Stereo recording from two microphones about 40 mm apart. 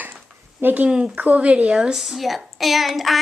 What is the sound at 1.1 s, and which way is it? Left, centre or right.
Speech, right.